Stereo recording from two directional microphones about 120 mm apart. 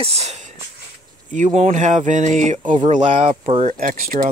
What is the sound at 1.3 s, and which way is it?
Speech, 85° right.